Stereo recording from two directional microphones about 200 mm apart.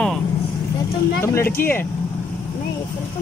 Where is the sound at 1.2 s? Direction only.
15° left (ahead or behind).